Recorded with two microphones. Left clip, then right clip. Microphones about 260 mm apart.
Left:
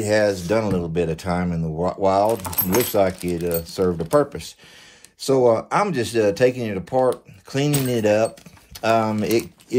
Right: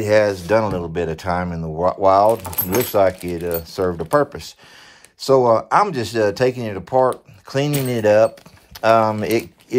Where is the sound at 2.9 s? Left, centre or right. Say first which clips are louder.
Right 3 dB; right.